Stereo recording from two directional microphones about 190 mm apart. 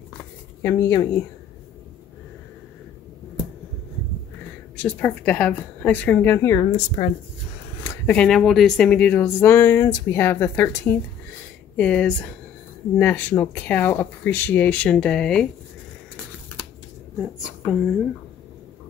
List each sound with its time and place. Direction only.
0.6 s speech: 15° left (ahead or behind)
4.8 s speech: 5° left (ahead or behind)
7.0 s speech: 40° left (ahead or behind)
7.9 s speech: 5° left (ahead or behind)
17.2 s a woman's voice: 5° right (ahead or behind)